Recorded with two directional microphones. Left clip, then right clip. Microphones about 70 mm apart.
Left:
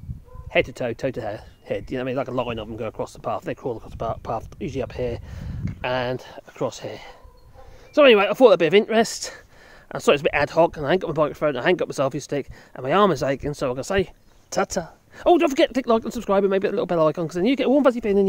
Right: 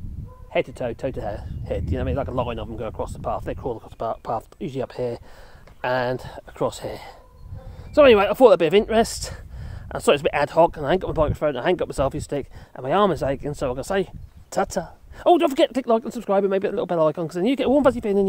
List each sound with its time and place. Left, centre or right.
0.5 s speech: centre
1.2 s speech: centre
2.4 s speech: centre
4.0 s speech: right
5.8 s speech: right
7.9 s speech: right
8.4 s speech: centre
12.7 s speech: centre
13.7 s speech: centre
15.9 s speech: centre